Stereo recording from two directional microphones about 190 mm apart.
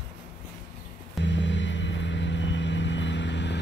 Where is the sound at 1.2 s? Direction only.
70° left (ahead or behind).